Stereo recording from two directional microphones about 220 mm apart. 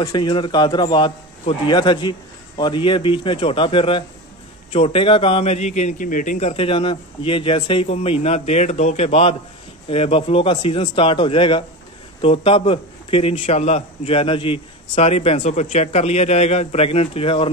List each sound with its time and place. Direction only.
0.0 s a man's voice: 20° left (ahead or behind)